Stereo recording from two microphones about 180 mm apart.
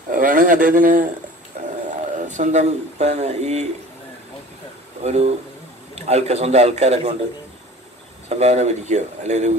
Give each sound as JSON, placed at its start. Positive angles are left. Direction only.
{"t": 0.1, "sound": "speech", "side_deg": -45}
{"t": 2.1, "sound": "speech", "side_deg": -40}
{"t": 5.0, "sound": "speech", "side_deg": -35}
{"t": 8.3, "sound": "speech", "side_deg": -40}